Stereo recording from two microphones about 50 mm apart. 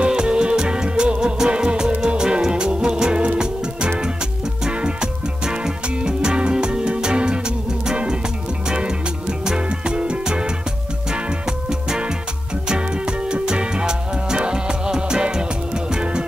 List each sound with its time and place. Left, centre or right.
0.0 s music: centre
13.3 s music: centre